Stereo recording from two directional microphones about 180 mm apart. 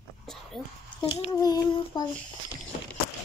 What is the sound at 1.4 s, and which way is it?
Child singing, 20° left (ahead or behind).